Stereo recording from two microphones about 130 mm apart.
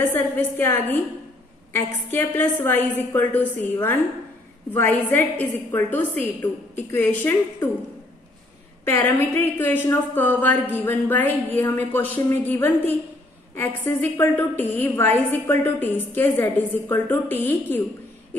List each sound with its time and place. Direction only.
0.0 s a woman's voice: 15° left (ahead or behind)
8.8 s a woman's voice: 15° left (ahead or behind)